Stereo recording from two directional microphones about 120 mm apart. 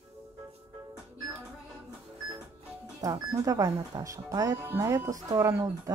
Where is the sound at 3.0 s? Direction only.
30° right (ahead or behind).